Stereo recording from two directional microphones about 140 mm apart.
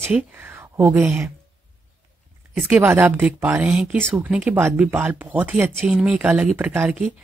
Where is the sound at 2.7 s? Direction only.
15° right (ahead or behind).